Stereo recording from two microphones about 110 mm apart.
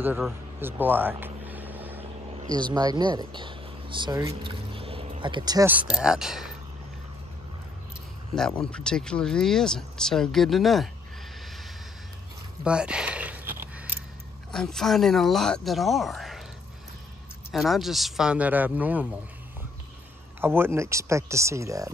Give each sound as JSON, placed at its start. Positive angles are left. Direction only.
{"t": 0.6, "sound": "vehicle", "side_deg": -20}
{"t": 2.7, "sound": "speech", "side_deg": -40}
{"t": 5.7, "sound": "speech", "side_deg": -10}
{"t": 8.4, "sound": "speech", "side_deg": 5}
{"t": 12.6, "sound": "a sound", "side_deg": -10}
{"t": 14.5, "sound": "speech", "side_deg": 5}
{"t": 17.5, "sound": "speech", "side_deg": 0}
{"t": 20.3, "sound": "speech", "side_deg": -20}